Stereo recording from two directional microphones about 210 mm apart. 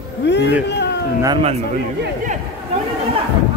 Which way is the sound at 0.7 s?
55° left (ahead or behind).